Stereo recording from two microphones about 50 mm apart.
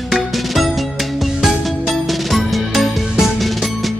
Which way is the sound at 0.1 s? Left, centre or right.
Centre.